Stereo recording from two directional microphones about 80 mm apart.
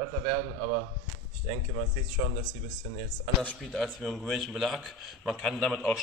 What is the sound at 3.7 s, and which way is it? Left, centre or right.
A man's voice, centre.